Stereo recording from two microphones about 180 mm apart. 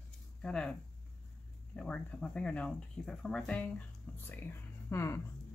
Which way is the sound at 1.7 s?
5° left (ahead or behind).